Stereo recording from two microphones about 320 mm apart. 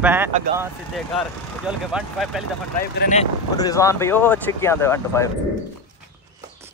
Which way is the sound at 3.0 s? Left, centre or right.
Left.